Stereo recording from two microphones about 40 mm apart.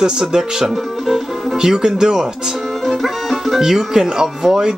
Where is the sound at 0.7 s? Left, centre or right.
Centre.